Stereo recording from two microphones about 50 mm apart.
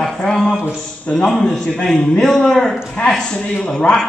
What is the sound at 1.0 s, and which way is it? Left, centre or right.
A man's voice, centre.